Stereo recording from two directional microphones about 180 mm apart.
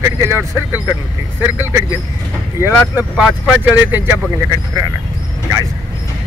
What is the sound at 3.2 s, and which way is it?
Speech, 5° right (ahead or behind).